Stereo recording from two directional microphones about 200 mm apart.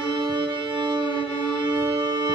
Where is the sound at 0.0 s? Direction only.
25° right (ahead or behind).